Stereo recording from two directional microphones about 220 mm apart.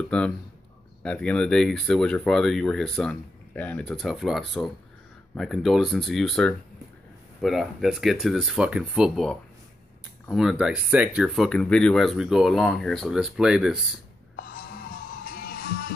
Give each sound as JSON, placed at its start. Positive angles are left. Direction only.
{"t": 0.1, "sound": "speech", "side_deg": 5}
{"t": 15.2, "sound": "music", "side_deg": 40}